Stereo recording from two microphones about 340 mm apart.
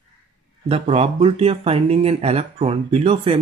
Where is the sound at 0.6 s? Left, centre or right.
Centre.